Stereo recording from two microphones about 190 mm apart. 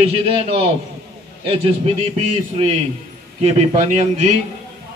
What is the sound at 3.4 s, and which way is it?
Speech, 35° right (ahead or behind).